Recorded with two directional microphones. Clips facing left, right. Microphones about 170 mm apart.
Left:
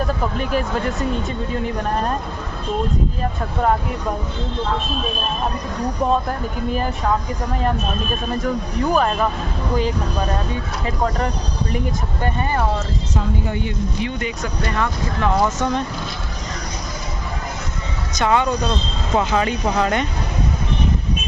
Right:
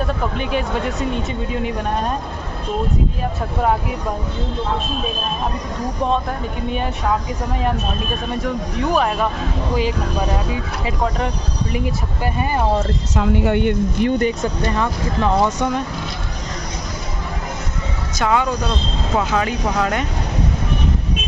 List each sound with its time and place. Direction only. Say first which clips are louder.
0.0 s speech: even; centre (ahead or behind)
6.7 s speech: even; centre (ahead or behind)
8.9 s speech: even; centre (ahead or behind)
13.1 s speech: right 7 dB; 80° right; by 14.3 s 45° right (ahead or behind)
14.4 s speech: right 4 dB; 25° right (ahead or behind)
15.4 s speech: right 1 dB; 10° right (ahead or behind)
18.2 s speech: left 1 dB; 5° right (ahead or behind)